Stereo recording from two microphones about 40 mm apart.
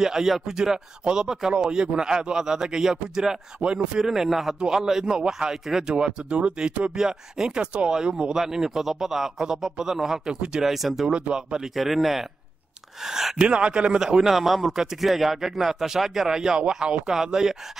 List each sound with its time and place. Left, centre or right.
0.0 s speech: centre
3.5 s speech: right
4.0 s speech: centre
5.9 s speech: centre
8.4 s speech: centre
11.1 s speech: right
11.6 s speech: centre
13.4 s speech: right
14.3 s speech: centre